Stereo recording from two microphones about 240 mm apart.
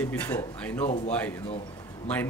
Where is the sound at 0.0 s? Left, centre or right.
Centre.